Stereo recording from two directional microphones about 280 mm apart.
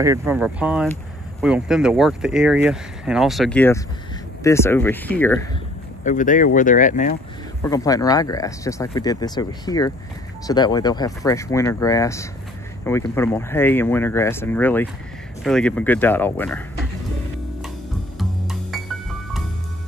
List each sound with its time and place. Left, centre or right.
0.0 s speech: centre
6.0 s speech: left
7.6 s speech: centre